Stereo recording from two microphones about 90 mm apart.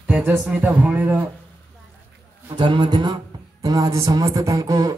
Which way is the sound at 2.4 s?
65° right (ahead or behind).